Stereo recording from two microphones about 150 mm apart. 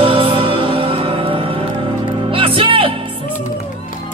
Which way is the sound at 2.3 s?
35° right (ahead or behind).